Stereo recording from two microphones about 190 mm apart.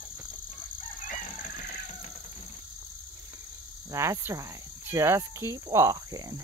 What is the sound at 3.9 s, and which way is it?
Speech, 15° right (ahead or behind).